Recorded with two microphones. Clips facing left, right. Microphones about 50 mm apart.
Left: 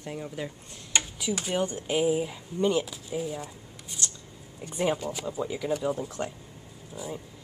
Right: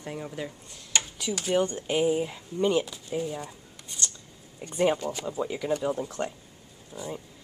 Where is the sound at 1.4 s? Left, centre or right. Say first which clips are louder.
Right 6 dB; centre.